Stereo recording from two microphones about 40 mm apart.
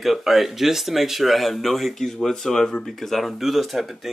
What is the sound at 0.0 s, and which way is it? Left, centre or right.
Speech, centre.